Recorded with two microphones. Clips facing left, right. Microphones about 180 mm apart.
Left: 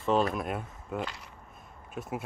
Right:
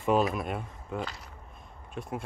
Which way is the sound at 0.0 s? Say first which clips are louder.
Right 1 dB; 10° right (ahead or behind).